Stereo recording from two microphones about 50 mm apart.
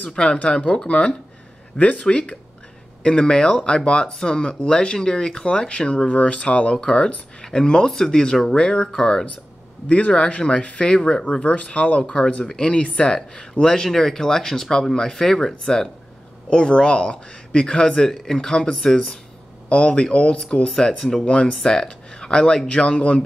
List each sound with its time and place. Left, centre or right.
0.1 s speech: centre